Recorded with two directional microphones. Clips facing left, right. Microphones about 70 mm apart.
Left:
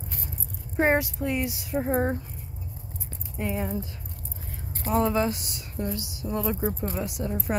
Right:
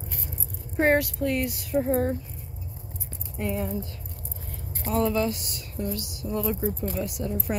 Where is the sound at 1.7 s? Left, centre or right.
Left.